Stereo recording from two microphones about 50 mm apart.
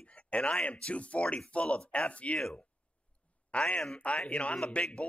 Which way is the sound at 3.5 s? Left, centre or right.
Left.